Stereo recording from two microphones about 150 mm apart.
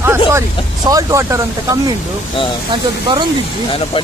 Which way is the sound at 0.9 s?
20° right (ahead or behind).